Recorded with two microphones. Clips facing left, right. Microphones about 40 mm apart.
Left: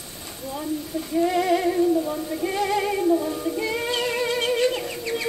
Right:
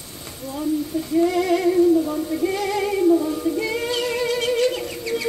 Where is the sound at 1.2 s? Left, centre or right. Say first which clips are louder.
Right 2 dB; centre.